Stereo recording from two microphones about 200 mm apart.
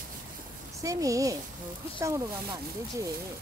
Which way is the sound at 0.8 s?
15° right (ahead or behind).